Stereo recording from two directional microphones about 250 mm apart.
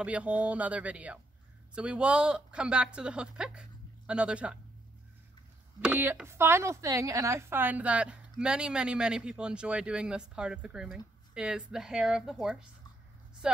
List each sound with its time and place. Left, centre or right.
0.0 s speech: centre
5.8 s speech: centre